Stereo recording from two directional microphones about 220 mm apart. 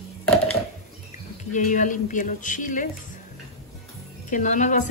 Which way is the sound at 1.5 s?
35° left (ahead or behind).